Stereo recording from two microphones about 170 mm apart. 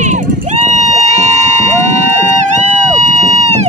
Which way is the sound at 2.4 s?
45° right (ahead or behind).